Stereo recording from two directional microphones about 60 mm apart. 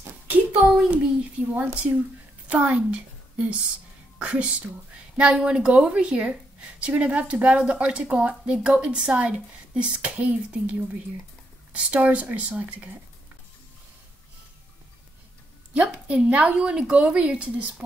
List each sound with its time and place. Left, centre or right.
0.6 s a sound: centre
1.5 s a woman's voice: right
15.7 s a woman's voice: centre